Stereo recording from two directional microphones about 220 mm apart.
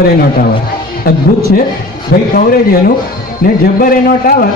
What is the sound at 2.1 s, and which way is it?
Speech, 50° left (ahead or behind).